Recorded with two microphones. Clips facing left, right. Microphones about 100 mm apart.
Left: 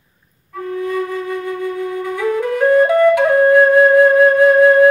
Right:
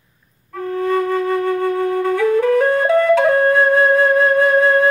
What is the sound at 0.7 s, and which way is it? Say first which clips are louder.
Flute: right 3 dB; 55° right (ahead or behind).